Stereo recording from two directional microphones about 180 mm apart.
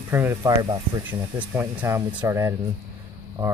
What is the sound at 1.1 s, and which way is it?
Speech, 10° right (ahead or behind).